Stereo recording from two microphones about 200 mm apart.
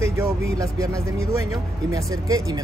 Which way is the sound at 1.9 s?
15° right (ahead or behind).